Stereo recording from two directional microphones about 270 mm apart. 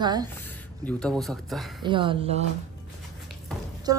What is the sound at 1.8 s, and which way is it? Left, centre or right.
Speech, centre.